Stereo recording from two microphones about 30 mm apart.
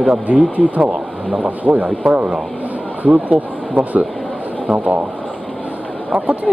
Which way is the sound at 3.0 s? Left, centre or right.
Right.